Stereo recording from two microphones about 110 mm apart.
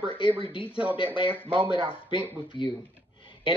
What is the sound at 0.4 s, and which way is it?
A man's voice, 50° left (ahead or behind).